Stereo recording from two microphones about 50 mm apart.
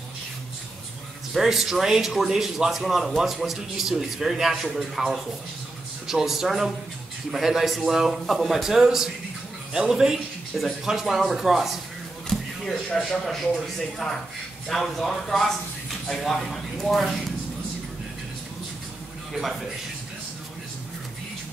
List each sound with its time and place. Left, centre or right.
1.3 s speech: centre
12.3 s a man's voice: centre